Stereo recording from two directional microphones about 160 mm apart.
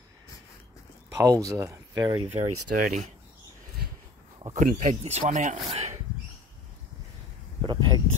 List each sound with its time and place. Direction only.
1.1 s speech: 20° right (ahead or behind)
2.3 s speech: 55° right (ahead or behind)
4.6 s speech: 50° right (ahead or behind)
5.7 s speech: 40° right (ahead or behind)
7.6 s a sound: 30° right (ahead or behind)